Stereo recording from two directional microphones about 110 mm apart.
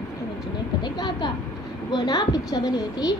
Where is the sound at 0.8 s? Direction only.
40° left (ahead or behind).